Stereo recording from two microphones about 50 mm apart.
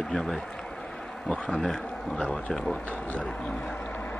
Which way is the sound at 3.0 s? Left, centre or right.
Left.